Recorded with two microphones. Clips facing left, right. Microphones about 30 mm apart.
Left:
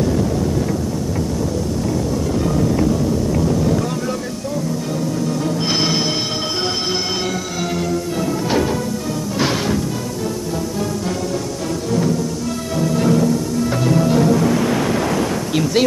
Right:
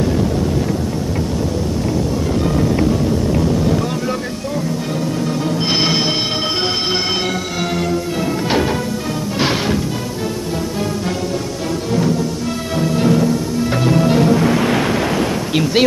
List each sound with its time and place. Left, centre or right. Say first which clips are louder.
2.4 s music: right 1 dB; right
3.4 s vehicle: right 1 dB; right
5.7 s a sound: right 3 dB; right
9.4 s music: right 2 dB; right
12.7 s music: right 1 dB; right